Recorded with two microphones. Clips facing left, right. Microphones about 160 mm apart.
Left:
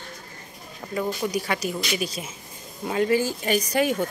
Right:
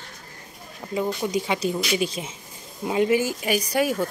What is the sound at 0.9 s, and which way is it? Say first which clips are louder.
Speech: right 1 dB; 20° right (ahead or behind).